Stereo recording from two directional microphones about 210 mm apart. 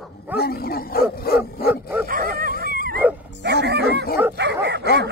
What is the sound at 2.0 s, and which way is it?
Dog, 40° right (ahead or behind).